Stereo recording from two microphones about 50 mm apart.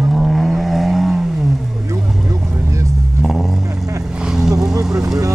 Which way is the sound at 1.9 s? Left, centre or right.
Right.